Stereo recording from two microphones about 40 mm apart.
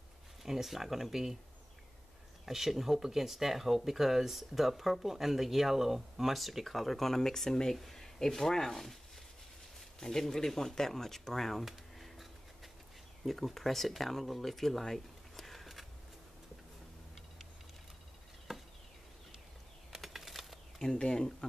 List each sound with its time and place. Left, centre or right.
0.4 s speech: centre
2.4 s speech: centre
9.9 s speech: centre
11.6 s a sound: centre
13.2 s speech: centre
18.5 s chop: centre
19.9 s a sound: centre
20.8 s speech: centre